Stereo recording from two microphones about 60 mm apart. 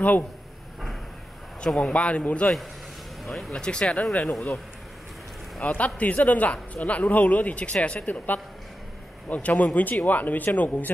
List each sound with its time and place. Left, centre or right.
1.7 s speech: centre
3.3 s speech: centre
3.5 s speech: centre
5.6 s speech: left
9.3 s speech: left